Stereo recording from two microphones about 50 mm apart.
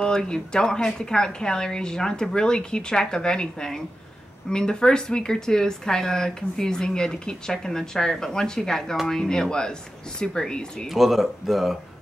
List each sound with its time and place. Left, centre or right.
0.0 s a woman's voice: centre
10.9 s speech: centre